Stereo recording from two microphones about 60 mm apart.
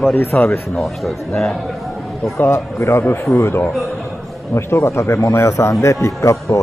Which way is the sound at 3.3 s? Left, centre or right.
Left.